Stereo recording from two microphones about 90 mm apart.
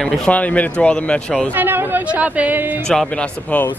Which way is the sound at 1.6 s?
20° right (ahead or behind).